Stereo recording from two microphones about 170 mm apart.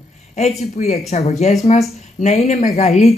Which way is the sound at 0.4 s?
40° left (ahead or behind).